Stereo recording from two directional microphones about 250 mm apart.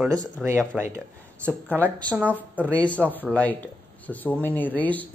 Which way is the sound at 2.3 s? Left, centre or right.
Centre.